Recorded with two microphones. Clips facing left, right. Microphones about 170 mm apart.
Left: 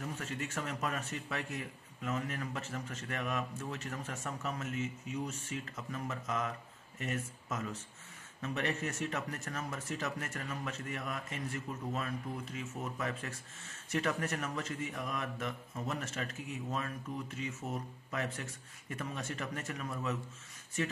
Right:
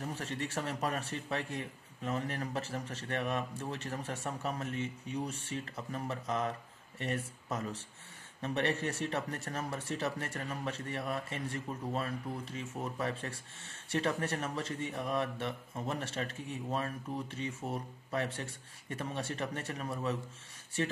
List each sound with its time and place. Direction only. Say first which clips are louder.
0.0 s speech: right 2 dB; 35° right (ahead or behind)